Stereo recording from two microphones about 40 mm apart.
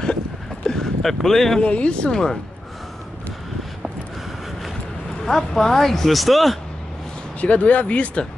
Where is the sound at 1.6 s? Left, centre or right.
Left.